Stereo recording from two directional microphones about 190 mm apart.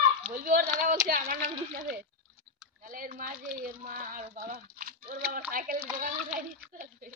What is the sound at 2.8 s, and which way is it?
A child's voice, 45° right (ahead or behind).